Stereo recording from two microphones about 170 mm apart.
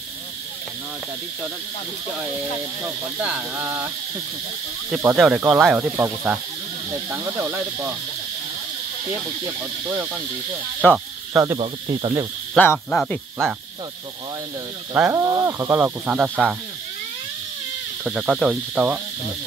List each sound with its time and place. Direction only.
3.2 s speech: 5° right (ahead or behind)
4.9 s cricket: 5° right (ahead or behind)
5.9 s speech: 10° right (ahead or behind)
9.6 s speech: 10° right (ahead or behind)
10.8 s speech: 10° left (ahead or behind)
11.5 s speech: 30° right (ahead or behind)
12.6 s speech: 5° left (ahead or behind)
12.9 s cricket: 5° left (ahead or behind)
15.0 s speech: 10° right (ahead or behind)
18.0 s cricket: 5° right (ahead or behind)